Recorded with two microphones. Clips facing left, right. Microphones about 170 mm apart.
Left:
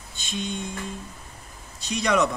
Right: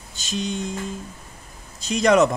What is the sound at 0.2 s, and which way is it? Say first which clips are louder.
Speech: right 4 dB; 90° right.